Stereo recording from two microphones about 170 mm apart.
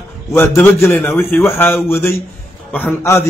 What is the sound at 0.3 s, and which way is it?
A man's voice, 10° left (ahead or behind).